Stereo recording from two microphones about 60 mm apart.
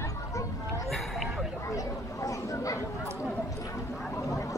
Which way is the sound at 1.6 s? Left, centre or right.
Left.